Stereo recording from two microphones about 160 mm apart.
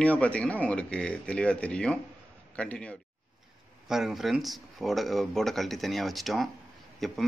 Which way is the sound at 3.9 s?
Centre (ahead or behind).